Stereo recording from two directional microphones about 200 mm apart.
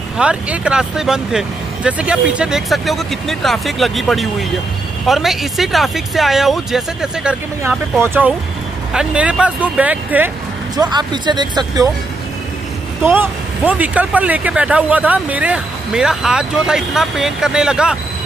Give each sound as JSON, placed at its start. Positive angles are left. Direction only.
{"t": 0.2, "sound": "speech", "side_deg": -5}
{"t": 10.8, "sound": "speech", "side_deg": -20}
{"t": 13.0, "sound": "speech", "side_deg": -10}